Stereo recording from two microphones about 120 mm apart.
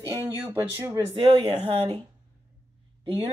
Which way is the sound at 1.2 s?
60° right (ahead or behind).